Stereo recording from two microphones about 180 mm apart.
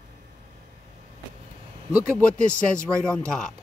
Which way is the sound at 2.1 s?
5° left (ahead or behind).